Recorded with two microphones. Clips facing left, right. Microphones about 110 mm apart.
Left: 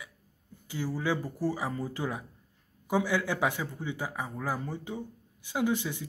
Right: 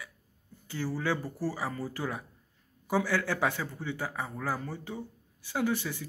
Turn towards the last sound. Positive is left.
turn(degrees=20)  # may be behind; listen again after turning